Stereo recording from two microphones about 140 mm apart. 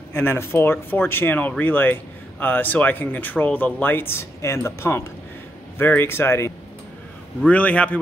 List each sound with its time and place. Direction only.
0.1 s speech: 15° left (ahead or behind)